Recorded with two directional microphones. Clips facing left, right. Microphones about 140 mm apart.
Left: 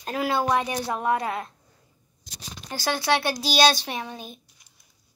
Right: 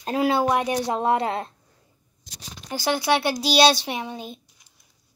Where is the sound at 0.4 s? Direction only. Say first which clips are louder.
Right 2 dB; 15° right (ahead or behind).